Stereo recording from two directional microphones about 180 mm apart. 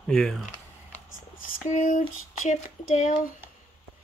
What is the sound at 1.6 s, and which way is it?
Speech, 45° left (ahead or behind).